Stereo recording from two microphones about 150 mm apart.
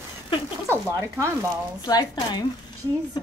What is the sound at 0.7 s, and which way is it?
Speech, 20° right (ahead or behind).